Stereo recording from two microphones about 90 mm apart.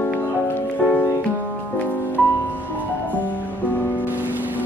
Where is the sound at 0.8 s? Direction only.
15° left (ahead or behind).